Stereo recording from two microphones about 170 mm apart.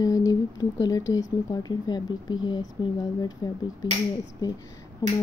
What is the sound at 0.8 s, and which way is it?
Speech, 20° left (ahead or behind).